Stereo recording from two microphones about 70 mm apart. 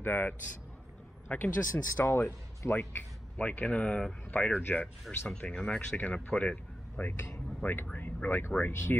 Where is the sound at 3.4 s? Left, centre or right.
Left.